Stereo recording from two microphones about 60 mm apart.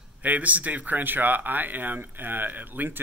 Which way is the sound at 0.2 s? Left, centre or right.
Right.